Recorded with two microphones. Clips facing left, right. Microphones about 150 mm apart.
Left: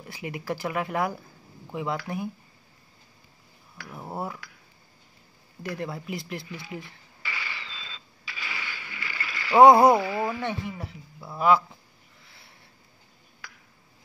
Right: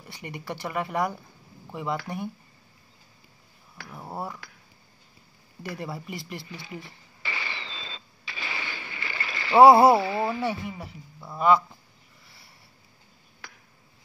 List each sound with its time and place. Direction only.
0.0 s a woman's voice: centre (ahead or behind)
3.9 s speech: centre (ahead or behind)
5.6 s a woman's voice: centre (ahead or behind)
7.2 s a sound: 30° right (ahead or behind)
9.6 s a woman's voice: 5° right (ahead or behind)
9.9 s speech: 30° right (ahead or behind)
10.4 s a woman's voice: 5° right (ahead or behind)
12.3 s a sound: centre (ahead or behind)
13.4 s a sound: 25° right (ahead or behind)